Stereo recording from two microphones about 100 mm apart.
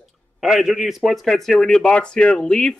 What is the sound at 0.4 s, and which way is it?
A man's voice, centre (ahead or behind).